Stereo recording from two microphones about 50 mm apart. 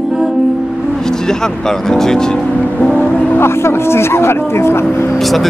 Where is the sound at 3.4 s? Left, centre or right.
Left.